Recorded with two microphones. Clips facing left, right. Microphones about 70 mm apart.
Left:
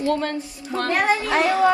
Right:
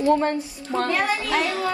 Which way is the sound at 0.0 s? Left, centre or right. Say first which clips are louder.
Right 3 dB; right.